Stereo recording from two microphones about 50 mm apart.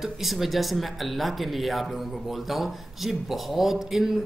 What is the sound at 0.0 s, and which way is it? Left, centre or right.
Speech, centre.